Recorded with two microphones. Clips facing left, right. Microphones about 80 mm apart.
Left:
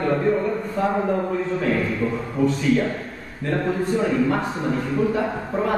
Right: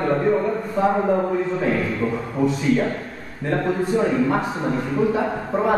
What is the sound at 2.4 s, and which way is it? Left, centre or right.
Speech, centre.